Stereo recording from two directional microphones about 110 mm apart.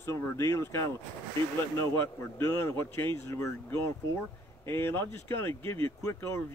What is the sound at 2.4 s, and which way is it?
Speech, 25° left (ahead or behind).